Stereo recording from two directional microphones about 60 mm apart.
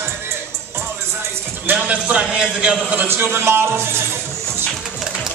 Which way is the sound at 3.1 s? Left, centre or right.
Right.